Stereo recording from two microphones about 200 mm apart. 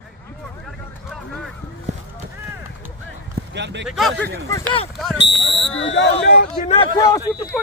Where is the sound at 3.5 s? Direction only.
60° right (ahead or behind).